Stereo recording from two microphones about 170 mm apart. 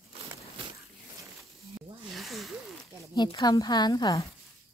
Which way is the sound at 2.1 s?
Centre (ahead or behind).